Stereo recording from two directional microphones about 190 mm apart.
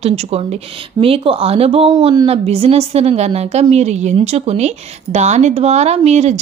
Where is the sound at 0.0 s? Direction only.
35° right (ahead or behind).